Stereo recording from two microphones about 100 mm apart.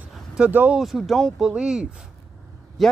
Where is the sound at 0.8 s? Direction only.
Centre (ahead or behind).